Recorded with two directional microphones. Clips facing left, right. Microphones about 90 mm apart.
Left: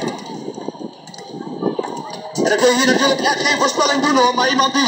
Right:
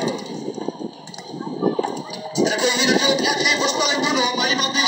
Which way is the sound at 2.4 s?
50° left (ahead or behind).